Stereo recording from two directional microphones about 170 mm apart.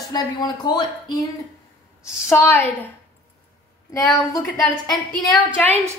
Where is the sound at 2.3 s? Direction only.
15° left (ahead or behind).